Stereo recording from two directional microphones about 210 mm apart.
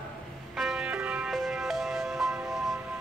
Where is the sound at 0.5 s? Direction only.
Centre (ahead or behind).